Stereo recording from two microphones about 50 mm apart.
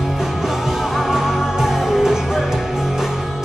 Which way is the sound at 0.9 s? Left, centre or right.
Centre.